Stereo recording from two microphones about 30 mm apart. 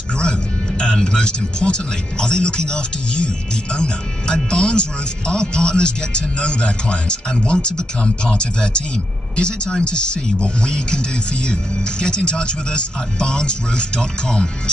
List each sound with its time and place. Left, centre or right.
0.2 s speech: left
12.0 s speech: left